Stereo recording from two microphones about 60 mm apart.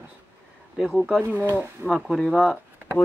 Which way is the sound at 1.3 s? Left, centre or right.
Right.